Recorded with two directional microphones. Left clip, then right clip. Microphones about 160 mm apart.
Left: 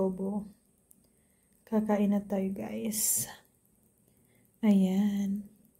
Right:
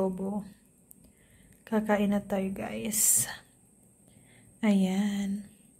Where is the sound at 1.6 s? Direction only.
10° left (ahead or behind).